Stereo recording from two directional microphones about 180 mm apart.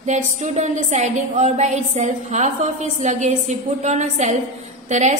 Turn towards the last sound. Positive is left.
turn(degrees=-40)  # may be behind; listen again after turning